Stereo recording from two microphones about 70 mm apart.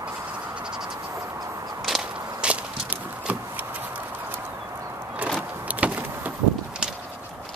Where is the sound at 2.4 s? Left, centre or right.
Centre.